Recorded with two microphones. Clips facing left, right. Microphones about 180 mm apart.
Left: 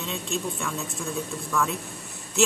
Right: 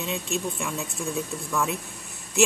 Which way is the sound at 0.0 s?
15° right (ahead or behind).